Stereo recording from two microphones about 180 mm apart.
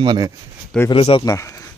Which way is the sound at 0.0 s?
25° right (ahead or behind).